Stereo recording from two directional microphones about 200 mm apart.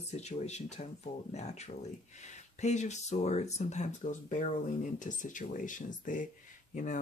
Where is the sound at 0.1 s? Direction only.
35° left (ahead or behind).